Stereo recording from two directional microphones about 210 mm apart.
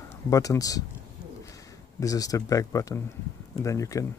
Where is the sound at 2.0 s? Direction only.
15° left (ahead or behind).